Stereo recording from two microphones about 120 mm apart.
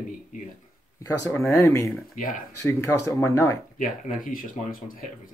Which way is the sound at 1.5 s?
25° left (ahead or behind).